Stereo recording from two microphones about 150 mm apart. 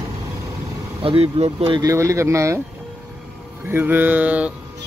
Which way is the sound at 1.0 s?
40° right (ahead or behind).